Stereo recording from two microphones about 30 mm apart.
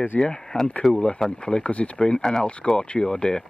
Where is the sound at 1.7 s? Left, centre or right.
Left.